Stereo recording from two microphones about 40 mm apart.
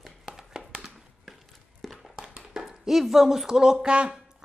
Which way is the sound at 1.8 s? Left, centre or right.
Centre.